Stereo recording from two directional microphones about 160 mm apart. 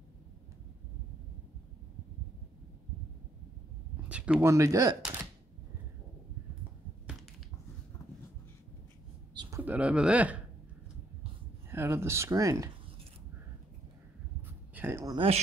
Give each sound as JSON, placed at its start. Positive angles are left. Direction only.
{"t": 3.9, "sound": "a sound", "side_deg": -5}
{"t": 4.5, "sound": "speech", "side_deg": -20}
{"t": 9.3, "sound": "a sound", "side_deg": -25}
{"t": 9.6, "sound": "speech", "side_deg": -10}
{"t": 11.7, "sound": "speech", "side_deg": -15}
{"t": 14.7, "sound": "speech", "side_deg": -15}
{"t": 15.1, "sound": "speech", "side_deg": -40}